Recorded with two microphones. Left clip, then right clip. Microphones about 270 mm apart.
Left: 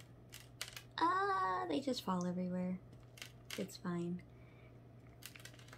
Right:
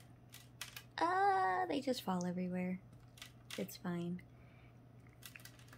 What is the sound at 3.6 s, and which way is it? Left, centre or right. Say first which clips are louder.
Speech: even; right.